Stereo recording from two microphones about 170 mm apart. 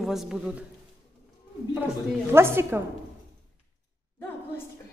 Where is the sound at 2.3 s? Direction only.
15° right (ahead or behind).